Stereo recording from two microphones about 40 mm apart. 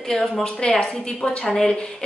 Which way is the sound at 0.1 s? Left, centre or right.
Centre.